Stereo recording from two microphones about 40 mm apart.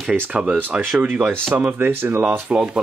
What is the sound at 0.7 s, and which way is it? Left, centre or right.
Speech, right.